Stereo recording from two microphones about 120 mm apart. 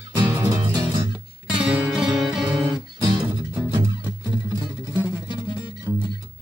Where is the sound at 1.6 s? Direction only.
10° right (ahead or behind).